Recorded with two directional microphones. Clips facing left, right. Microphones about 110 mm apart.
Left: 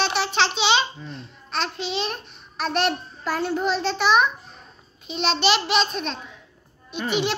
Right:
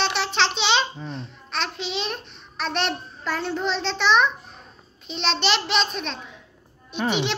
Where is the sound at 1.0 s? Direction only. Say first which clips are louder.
Right 3 dB; centre (ahead or behind).